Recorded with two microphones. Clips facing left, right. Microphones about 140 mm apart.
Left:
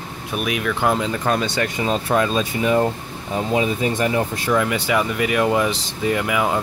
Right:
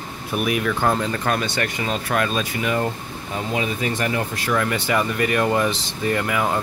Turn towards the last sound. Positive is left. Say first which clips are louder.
# left 2 dB
turn(degrees=10)  # may be behind; listen again after turning